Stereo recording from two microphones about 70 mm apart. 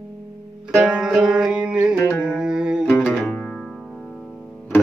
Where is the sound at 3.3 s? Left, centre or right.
Centre.